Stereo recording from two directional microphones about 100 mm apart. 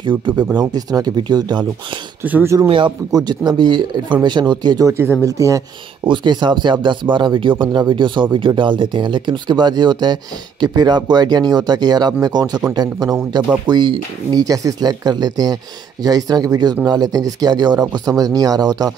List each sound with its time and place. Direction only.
0.4 s speech: 40° right (ahead or behind)
2.2 s speech: 15° right (ahead or behind)
3.1 s speech: 45° right (ahead or behind)
4.9 s speech: 20° right (ahead or behind)
5.2 s speech: 30° right (ahead or behind)
6.0 s speech: 50° right (ahead or behind)